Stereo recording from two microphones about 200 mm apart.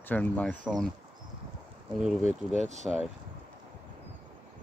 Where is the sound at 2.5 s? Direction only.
35° right (ahead or behind).